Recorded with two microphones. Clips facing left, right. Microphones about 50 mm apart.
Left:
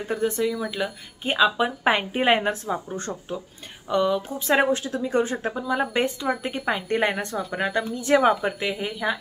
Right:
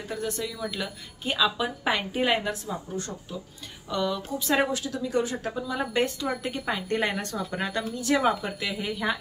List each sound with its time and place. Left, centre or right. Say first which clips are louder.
0.1 s speech: left 8 dB; left
0.6 s a woman's voice: left 5 dB; centre
1.2 s a woman's voice: left 5 dB; left
3.9 s speech: left 6 dB; left
4.7 s speech: left 4 dB; left
8.9 s a woman's voice: left 2 dB; centre